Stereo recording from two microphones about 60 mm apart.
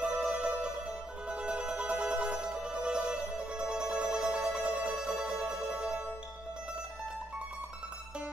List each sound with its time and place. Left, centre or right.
0.0 s music: centre